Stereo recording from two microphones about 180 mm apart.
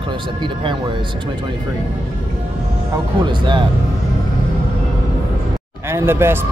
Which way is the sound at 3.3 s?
25° right (ahead or behind).